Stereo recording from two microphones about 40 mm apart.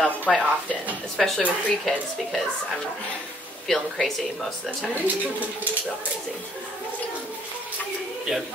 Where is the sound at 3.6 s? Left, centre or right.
Centre.